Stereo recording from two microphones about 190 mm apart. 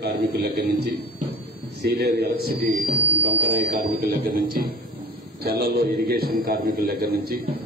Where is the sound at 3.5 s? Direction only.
55° right (ahead or behind).